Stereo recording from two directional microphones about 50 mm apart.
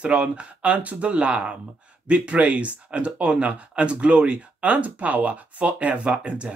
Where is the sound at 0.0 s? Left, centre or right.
Right.